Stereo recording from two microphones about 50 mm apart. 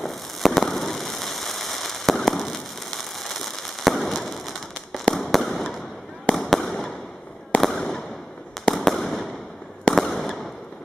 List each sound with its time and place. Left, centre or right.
0.0 s fireworks: centre